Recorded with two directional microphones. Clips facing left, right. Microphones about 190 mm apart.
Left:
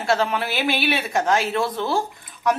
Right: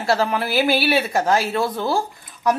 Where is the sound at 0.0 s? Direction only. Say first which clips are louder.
Right 1 dB; centre (ahead or behind).